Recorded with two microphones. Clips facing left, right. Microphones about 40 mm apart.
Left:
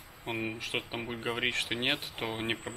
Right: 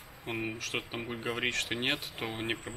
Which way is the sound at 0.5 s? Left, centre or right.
Centre.